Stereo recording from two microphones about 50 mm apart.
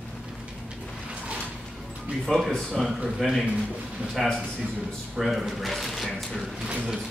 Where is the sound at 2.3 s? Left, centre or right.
Centre.